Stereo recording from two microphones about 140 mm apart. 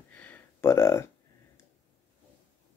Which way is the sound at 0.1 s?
10° left (ahead or behind).